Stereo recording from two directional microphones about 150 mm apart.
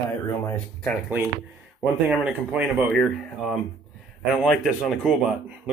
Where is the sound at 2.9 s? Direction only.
Centre (ahead or behind).